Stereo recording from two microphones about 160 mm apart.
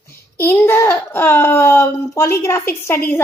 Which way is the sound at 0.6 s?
15° left (ahead or behind).